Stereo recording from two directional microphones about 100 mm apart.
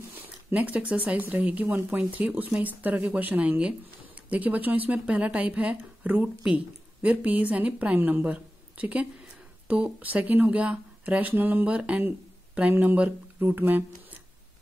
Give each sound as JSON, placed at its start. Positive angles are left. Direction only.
{"t": 0.2, "sound": "speech", "side_deg": -15}